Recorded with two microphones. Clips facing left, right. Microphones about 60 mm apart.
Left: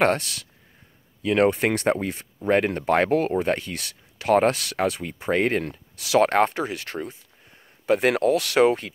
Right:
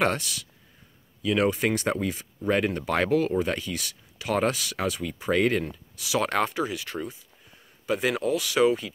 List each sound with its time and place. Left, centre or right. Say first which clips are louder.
0.0 s speech: left 4 dB; left
5.7 s speech: left 6 dB; left